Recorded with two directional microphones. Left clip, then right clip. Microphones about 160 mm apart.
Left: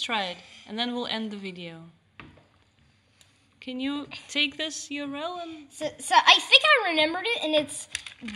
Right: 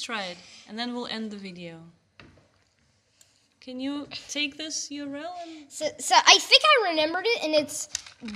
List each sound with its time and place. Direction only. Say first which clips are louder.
0.0 s speech: left 4 dB; 10° left (ahead or behind)
0.4 s a sound: left 1 dB; 45° right (ahead or behind)
0.7 s speech: left 3 dB; 10° left (ahead or behind)
3.5 s a woman's voice: left 1 dB; 10° left (ahead or behind)
5.5 s a woman's voice: right 2 dB; 45° right (ahead or behind)